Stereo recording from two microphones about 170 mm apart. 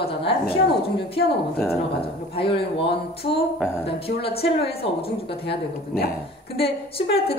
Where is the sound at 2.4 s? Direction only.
30° left (ahead or behind).